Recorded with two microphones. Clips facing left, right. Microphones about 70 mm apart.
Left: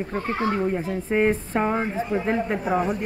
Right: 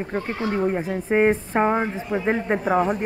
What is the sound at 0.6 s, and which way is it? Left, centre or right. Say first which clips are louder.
Speech: right 2 dB; right.